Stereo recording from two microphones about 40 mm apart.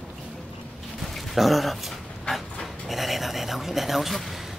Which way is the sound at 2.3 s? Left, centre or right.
Centre.